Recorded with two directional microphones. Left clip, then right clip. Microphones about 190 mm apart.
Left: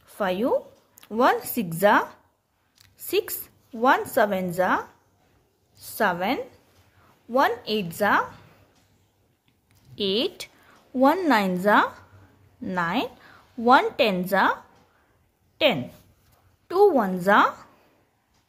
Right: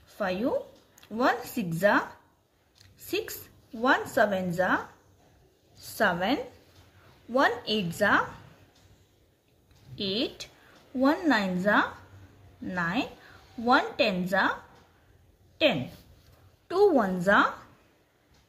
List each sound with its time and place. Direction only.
0.1 s a woman's voice: 40° left (ahead or behind)
9.9 s a woman's voice: 45° left (ahead or behind)
15.5 s a sound: 40° left (ahead or behind)
16.6 s a woman's voice: 30° left (ahead or behind)